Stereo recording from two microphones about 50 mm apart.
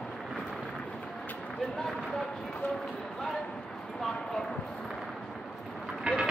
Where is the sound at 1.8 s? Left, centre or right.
Centre.